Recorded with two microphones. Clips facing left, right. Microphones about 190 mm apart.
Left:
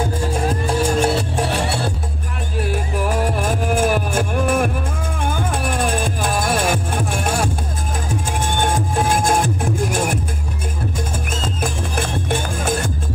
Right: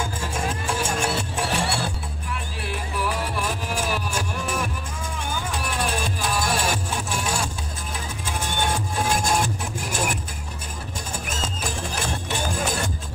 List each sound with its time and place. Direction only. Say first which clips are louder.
0.0 s music: left 7 dB; 35° left (ahead or behind)
2.6 s music: left 7 dB; 45° left (ahead or behind)
11.2 s music: left 6 dB; 55° left (ahead or behind)